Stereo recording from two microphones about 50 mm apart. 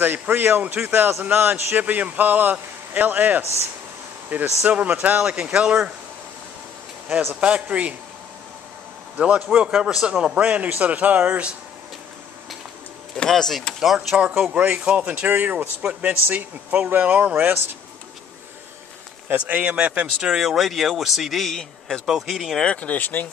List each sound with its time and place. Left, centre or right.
0.0 s a man's voice: right
5.3 s speech: right
7.3 s speech: right
9.2 s speech: right
10.3 s speech: right
13.3 s speech: centre
14.3 s speech: right
19.2 s speech: right
20.2 s speech: centre
21.5 s a man's voice: centre
22.0 s speech: centre
22.8 s speech: left